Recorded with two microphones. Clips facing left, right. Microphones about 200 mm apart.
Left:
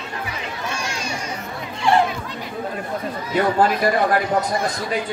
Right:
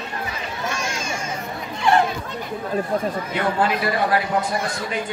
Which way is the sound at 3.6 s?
45° left (ahead or behind).